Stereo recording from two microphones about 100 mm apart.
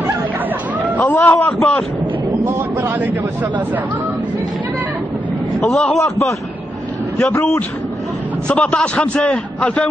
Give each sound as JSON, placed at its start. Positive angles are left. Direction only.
{"t": 0.9, "sound": "a man's voice", "side_deg": 15}
{"t": 2.4, "sound": "speech", "side_deg": -20}
{"t": 5.6, "sound": "a man's voice", "side_deg": 10}
{"t": 8.5, "sound": "a man's voice", "side_deg": 10}